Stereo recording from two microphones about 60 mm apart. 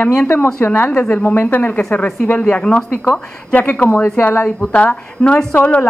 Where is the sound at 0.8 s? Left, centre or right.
Left.